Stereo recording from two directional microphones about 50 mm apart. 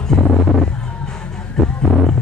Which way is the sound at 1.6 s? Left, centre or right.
Centre.